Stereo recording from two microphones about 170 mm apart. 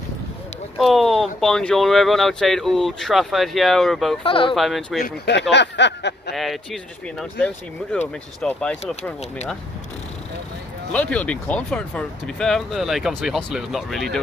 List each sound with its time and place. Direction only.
0.7 s speech: centre (ahead or behind)
4.2 s speech: 30° left (ahead or behind)
4.6 s speech: centre (ahead or behind)
5.0 s speech: 75° left (ahead or behind)
5.5 s a sound: 90° left
6.3 s speech: centre (ahead or behind)
10.9 s speech: 5° left (ahead or behind)